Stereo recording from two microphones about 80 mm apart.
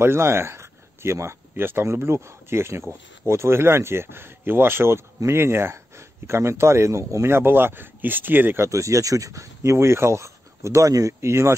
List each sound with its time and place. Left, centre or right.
0.0 s speech: right
8.6 s speech: right